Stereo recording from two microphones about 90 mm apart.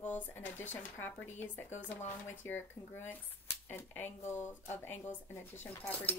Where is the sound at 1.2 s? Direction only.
20° left (ahead or behind).